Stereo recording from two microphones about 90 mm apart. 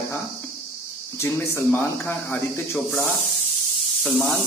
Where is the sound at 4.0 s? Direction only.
Centre (ahead or behind).